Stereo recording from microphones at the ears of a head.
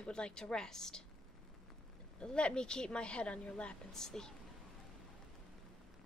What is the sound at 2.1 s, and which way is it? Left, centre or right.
Speech, centre.